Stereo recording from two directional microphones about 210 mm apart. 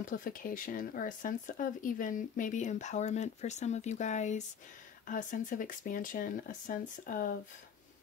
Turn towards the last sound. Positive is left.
turn(degrees=40)  # may be behind; listen again after turning